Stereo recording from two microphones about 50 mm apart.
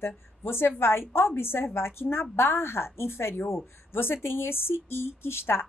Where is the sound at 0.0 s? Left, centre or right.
Left.